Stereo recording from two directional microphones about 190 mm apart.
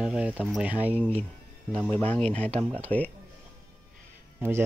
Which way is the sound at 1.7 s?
5° left (ahead or behind).